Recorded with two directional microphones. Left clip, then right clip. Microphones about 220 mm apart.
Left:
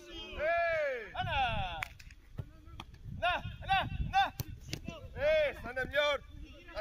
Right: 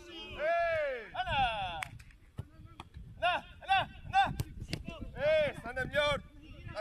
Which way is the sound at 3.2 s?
40° right (ahead or behind).